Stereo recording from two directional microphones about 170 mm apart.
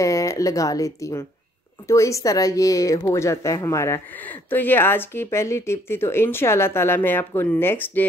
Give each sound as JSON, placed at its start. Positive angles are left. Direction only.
{"t": 0.0, "sound": "a woman's voice", "side_deg": 20}